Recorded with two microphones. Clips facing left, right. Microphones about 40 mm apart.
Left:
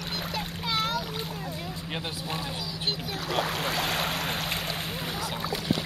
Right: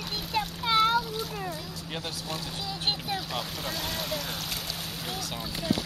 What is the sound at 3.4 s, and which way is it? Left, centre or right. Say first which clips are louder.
Boat: left 6 dB; left.